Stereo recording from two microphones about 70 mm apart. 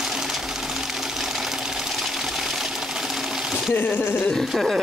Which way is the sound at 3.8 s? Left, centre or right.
Left.